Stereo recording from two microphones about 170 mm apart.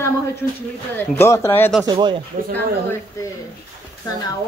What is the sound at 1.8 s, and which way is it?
Speech, 25° right (ahead or behind).